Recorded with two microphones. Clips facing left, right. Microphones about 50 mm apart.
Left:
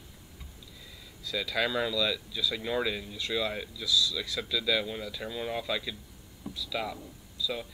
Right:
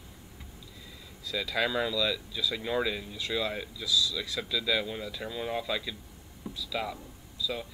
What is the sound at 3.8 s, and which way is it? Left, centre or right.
Speech, right.